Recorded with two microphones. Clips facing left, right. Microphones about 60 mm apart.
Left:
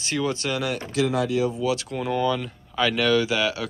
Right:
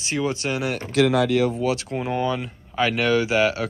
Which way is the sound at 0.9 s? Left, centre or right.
Right.